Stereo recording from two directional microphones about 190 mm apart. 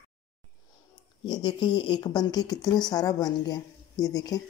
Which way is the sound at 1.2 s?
25° left (ahead or behind).